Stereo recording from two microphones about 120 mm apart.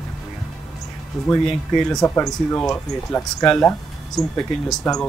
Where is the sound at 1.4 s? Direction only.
5° left (ahead or behind).